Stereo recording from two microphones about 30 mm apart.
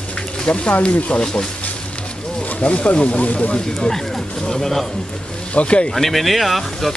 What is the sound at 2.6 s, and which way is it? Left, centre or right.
Speech, left.